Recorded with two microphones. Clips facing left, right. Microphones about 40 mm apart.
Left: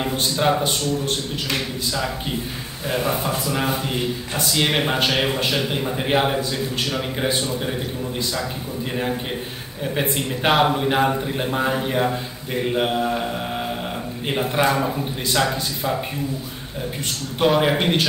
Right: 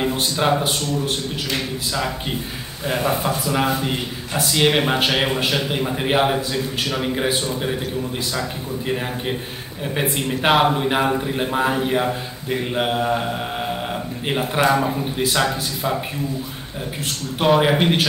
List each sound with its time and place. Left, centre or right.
0.0 s speech: centre
2.9 s a man's voice: centre
4.7 s a man's voice: centre
8.8 s a man's voice: centre
14.2 s a man's voice: centre
17.4 s a man's voice: centre